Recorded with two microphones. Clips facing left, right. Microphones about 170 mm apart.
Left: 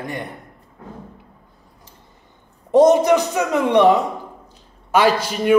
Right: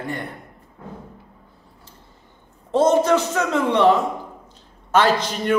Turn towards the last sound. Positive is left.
turn(degrees=10)  # may be behind; listen again after turning